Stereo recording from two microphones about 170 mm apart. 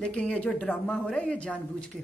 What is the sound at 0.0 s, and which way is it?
Speech, 5° left (ahead or behind).